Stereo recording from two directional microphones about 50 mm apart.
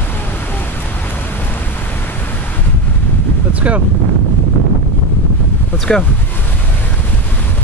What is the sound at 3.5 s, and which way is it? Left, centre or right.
Wind noise, right.